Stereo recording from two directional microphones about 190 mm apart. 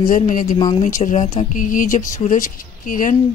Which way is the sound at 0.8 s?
40° left (ahead or behind).